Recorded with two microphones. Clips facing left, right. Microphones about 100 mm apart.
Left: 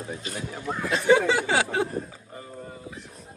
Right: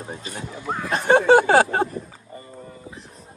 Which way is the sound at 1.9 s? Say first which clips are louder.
Left 1 dB; 90° left.